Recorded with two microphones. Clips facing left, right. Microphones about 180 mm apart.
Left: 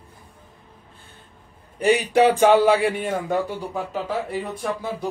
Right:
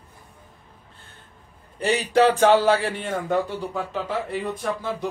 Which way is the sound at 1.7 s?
10° left (ahead or behind).